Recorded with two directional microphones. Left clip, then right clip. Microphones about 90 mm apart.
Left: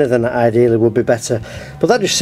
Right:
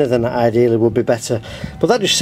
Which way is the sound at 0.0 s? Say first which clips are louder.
Left 2 dB; 20° right (ahead or behind).